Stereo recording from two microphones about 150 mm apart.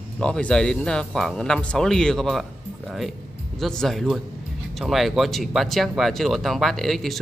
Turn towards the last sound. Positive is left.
turn(degrees=0)  # may be behind; listen again after turning